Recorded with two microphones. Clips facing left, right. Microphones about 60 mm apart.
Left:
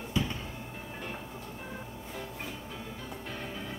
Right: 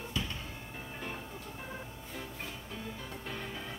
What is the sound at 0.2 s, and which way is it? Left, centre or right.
Music, centre.